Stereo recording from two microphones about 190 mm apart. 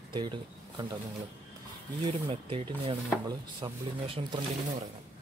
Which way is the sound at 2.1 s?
30° right (ahead or behind).